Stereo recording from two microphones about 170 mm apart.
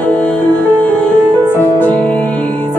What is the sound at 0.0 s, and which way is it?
Music, 5° left (ahead or behind).